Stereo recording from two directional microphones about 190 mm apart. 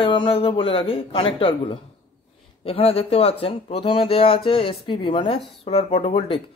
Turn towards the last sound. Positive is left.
turn(degrees=30)  # may be behind; listen again after turning